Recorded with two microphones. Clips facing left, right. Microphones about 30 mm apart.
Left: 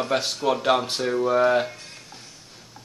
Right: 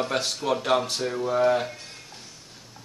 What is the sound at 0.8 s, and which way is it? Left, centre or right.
Speech, left.